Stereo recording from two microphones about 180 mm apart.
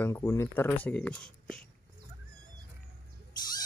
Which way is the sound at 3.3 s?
25° left (ahead or behind).